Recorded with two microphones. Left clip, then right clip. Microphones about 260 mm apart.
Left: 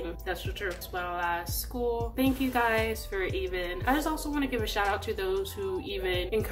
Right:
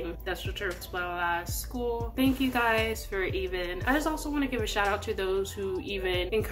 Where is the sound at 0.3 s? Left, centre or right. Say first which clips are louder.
Even; centre.